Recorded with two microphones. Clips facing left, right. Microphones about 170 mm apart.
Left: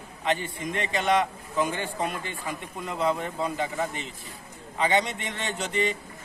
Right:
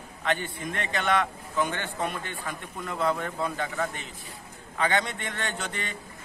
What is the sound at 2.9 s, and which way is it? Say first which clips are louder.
Speech: left 1 dB; 25° left (ahead or behind).